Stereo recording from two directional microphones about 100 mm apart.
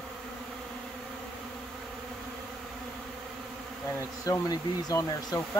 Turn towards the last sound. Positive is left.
turn(degrees=40)  # may be behind; listen again after turning